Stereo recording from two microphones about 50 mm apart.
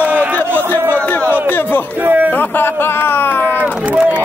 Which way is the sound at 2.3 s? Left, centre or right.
Left.